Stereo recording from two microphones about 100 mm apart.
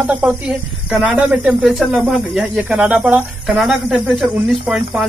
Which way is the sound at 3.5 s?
Centre (ahead or behind).